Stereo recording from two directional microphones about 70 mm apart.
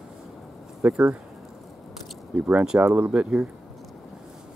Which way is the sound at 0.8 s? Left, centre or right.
Centre.